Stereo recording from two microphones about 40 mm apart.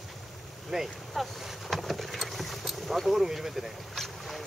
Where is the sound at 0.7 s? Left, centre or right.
Centre.